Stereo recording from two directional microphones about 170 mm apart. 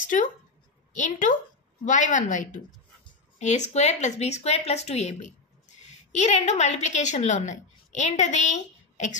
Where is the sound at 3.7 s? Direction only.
40° left (ahead or behind).